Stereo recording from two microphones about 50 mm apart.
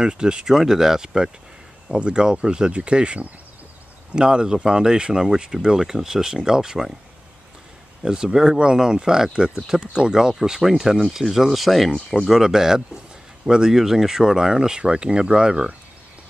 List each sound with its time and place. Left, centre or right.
0.0 s speech: centre
8.0 s speech: centre